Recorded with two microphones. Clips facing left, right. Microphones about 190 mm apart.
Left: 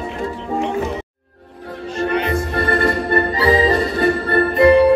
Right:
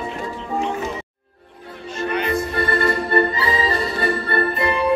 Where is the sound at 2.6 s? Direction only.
60° left (ahead or behind).